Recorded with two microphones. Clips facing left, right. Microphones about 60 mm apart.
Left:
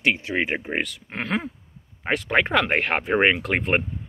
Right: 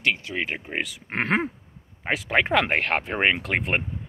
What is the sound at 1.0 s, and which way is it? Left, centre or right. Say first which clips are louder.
Speech: right 3 dB; right.